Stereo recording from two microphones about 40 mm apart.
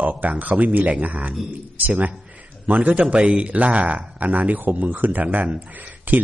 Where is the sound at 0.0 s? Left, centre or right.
Right.